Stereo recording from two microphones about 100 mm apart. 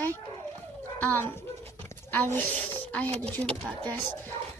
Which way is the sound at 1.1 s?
20° left (ahead or behind).